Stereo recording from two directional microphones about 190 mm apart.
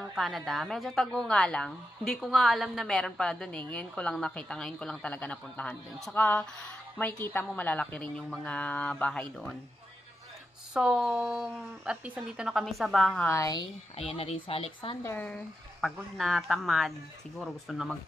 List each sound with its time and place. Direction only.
0.1 s a woman's voice: centre (ahead or behind)
10.7 s a woman's voice: centre (ahead or behind)
13.3 s speech: 20° left (ahead or behind)
13.9 s speech: 30° left (ahead or behind)
15.0 s a woman's voice: 10° left (ahead or behind)